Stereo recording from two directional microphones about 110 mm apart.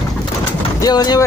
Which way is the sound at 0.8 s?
35° left (ahead or behind).